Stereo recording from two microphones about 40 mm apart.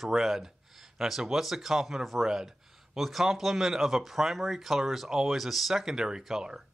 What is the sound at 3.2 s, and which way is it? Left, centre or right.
Speech, centre.